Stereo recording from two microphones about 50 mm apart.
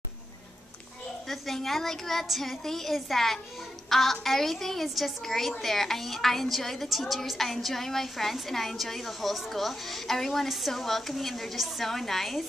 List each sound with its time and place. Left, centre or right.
1.3 s a woman's voice: centre